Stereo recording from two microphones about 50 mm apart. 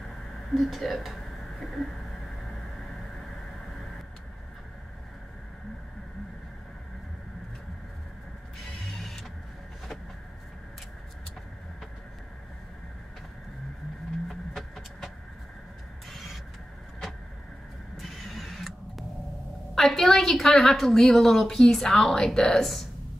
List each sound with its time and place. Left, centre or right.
0.6 s a woman's voice: centre
14.5 s a sound: centre
18.0 s neigh: centre
19.7 s a woman's voice: centre